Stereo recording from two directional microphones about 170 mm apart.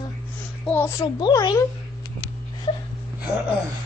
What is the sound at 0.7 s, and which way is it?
Speech, 10° left (ahead or behind).